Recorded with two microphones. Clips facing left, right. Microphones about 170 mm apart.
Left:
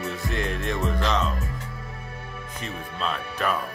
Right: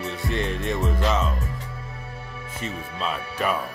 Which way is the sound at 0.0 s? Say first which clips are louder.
Right 1 dB; centre (ahead or behind).